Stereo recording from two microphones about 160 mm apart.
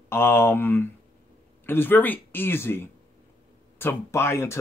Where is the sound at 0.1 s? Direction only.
15° left (ahead or behind).